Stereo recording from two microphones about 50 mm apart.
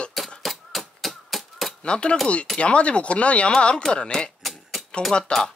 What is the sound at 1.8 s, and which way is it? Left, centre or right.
Speech, left.